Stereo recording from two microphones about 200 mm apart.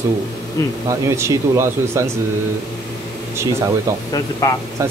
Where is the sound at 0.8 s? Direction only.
15° right (ahead or behind).